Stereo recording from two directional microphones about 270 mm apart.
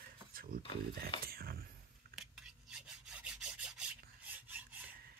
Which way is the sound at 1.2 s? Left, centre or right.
Right.